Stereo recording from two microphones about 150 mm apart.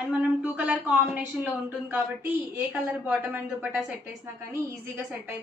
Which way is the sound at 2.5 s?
10° right (ahead or behind).